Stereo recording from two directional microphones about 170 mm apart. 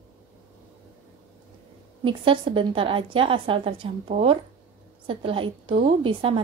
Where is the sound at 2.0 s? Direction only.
30° right (ahead or behind).